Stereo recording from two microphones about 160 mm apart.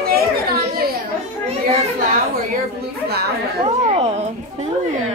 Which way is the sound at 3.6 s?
40° right (ahead or behind).